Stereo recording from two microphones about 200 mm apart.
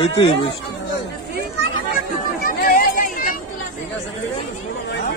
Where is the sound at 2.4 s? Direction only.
45° left (ahead or behind).